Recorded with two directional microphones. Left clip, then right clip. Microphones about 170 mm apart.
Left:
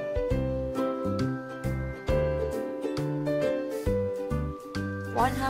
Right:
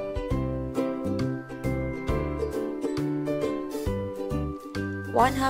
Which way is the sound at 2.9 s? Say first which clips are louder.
Left 2 dB; centre (ahead or behind).